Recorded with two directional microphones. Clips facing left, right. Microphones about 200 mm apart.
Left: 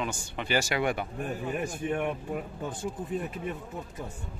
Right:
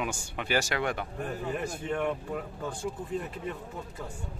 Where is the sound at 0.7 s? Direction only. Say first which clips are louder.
Left 2 dB; 10° left (ahead or behind).